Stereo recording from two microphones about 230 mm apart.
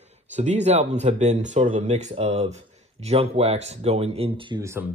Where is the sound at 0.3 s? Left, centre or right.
Right.